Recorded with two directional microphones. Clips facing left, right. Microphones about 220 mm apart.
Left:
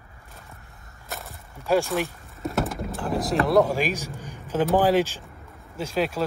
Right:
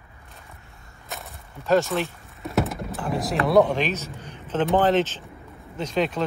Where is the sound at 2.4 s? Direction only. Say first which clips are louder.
Right 1 dB; centre (ahead or behind).